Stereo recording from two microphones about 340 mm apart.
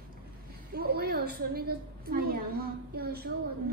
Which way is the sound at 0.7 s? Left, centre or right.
Right.